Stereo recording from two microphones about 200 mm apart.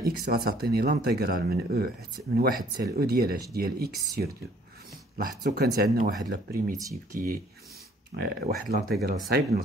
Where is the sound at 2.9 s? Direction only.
50° right (ahead or behind).